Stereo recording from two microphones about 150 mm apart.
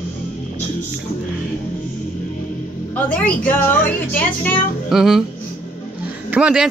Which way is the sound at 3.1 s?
10° left (ahead or behind).